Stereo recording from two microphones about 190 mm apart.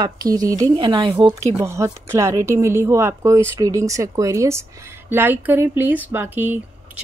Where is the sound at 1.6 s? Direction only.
15° right (ahead or behind).